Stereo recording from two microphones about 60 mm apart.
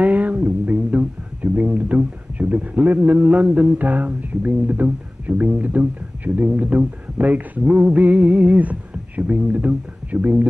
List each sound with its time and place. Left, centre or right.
0.0 s speech: right